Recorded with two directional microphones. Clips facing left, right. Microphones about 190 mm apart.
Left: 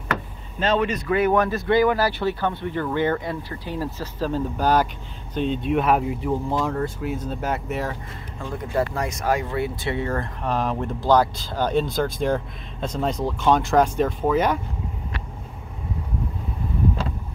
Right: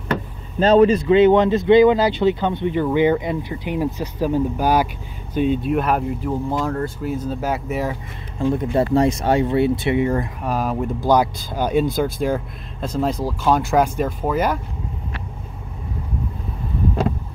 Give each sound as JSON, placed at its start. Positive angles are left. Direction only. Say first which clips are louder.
{"t": 0.1, "sound": "speech", "louder": "right 4 dB", "side_deg": -35}
{"t": 8.4, "sound": "speech", "louder": "right 6 dB", "side_deg": -25}